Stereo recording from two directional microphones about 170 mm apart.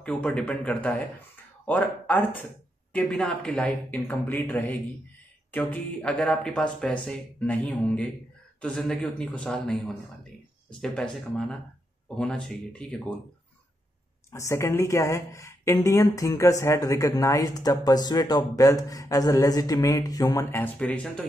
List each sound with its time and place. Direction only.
0.0 s speech: 5° left (ahead or behind)
14.3 s speech: 15° left (ahead or behind)